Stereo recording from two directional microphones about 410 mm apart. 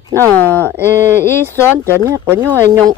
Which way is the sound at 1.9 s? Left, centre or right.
Centre.